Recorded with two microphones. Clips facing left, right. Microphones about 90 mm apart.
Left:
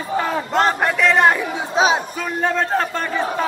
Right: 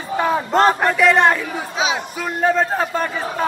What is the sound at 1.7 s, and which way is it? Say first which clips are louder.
Speech: left 5 dB; 35° left (ahead or behind).